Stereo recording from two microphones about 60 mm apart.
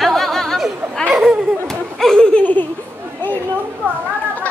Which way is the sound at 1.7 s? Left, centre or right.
Centre.